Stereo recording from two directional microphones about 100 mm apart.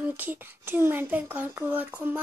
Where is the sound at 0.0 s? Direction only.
20° right (ahead or behind).